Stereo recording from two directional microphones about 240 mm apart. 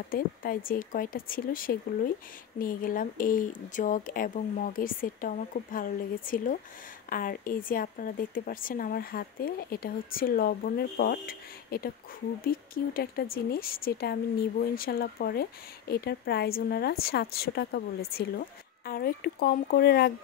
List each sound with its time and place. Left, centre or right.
0.1 s speech: left